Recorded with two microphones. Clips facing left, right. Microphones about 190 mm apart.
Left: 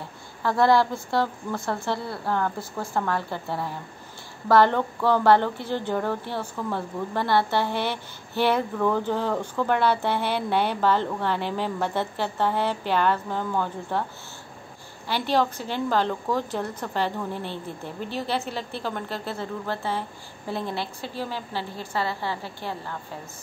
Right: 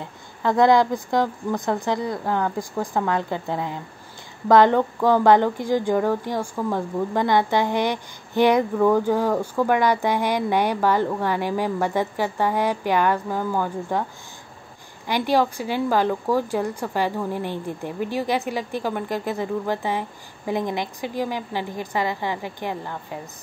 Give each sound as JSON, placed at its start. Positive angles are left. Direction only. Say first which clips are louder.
{"t": 0.4, "sound": "a woman's voice", "louder": "right 3 dB", "side_deg": -20}
{"t": 15.0, "sound": "a woman's voice", "louder": "right 3 dB", "side_deg": -15}